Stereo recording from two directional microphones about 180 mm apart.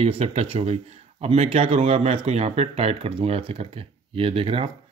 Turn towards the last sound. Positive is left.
turn(degrees=-30)  # may be behind; listen again after turning